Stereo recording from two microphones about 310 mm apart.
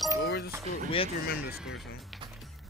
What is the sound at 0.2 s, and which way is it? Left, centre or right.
Chink, left.